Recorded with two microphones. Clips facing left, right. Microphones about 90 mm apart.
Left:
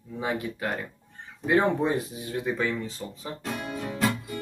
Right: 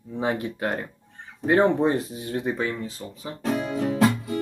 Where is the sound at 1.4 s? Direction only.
40° right (ahead or behind).